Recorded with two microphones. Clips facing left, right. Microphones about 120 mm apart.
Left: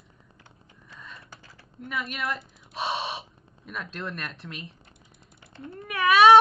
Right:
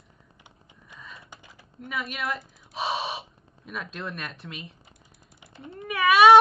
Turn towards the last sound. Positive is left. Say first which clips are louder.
# right 1 dB
turn(degrees=0)  # may be behind; listen again after turning